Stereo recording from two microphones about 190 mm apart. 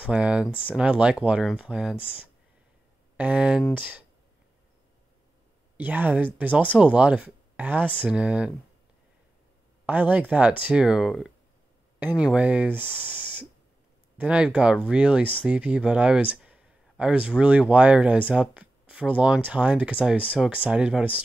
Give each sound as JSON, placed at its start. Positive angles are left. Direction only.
{"t": 0.0, "sound": "speech", "side_deg": -5}
{"t": 2.0, "sound": "speech", "side_deg": 30}
{"t": 3.2, "sound": "speech", "side_deg": -5}
{"t": 5.8, "sound": "speech", "side_deg": -10}
{"t": 9.8, "sound": "speech", "side_deg": -10}